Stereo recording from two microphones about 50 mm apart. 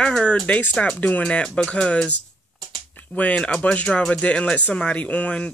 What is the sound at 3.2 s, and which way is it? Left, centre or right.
Speech, left.